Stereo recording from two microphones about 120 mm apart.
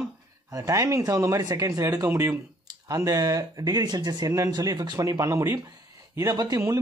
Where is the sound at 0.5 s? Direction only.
25° right (ahead or behind).